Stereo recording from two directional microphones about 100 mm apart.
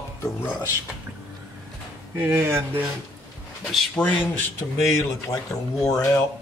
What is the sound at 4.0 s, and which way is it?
Speech, 15° left (ahead or behind).